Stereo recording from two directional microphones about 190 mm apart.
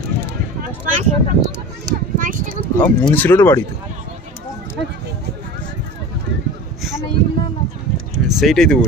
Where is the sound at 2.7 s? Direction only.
10° left (ahead or behind).